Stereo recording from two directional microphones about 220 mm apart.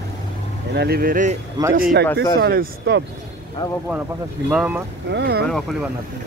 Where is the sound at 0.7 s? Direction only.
45° right (ahead or behind).